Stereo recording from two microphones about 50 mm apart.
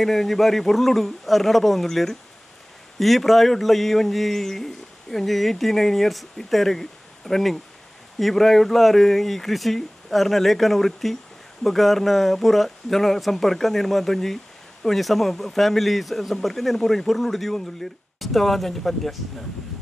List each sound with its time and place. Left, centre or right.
0.0 s speech: centre